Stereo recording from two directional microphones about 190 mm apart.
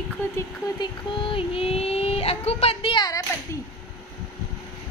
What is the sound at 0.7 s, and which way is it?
Child singing, 25° left (ahead or behind).